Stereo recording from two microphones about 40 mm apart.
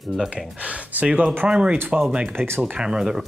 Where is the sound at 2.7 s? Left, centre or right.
Right.